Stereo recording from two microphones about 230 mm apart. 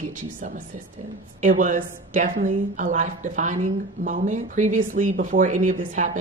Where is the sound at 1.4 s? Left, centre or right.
Right.